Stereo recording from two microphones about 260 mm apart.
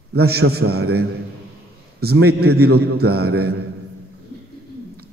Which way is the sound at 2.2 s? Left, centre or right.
Right.